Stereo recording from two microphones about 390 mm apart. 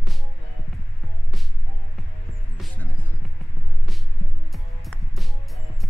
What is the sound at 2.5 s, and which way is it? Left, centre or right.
Music, centre.